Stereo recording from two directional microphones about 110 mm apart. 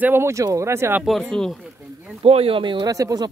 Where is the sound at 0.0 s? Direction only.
20° right (ahead or behind).